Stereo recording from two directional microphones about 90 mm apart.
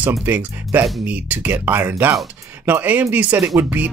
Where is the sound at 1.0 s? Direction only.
20° right (ahead or behind).